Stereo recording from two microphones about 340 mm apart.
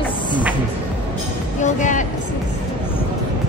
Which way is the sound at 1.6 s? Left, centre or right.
Left.